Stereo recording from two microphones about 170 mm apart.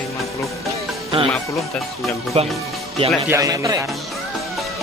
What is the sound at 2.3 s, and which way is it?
Speech, 35° right (ahead or behind).